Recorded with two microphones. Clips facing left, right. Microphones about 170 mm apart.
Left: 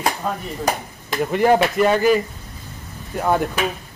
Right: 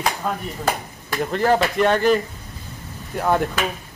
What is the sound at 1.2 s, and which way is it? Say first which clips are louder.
Speech: left 3 dB; 15° left (ahead or behind).